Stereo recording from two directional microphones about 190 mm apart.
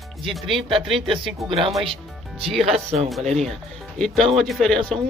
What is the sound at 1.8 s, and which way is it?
Music, 30° right (ahead or behind).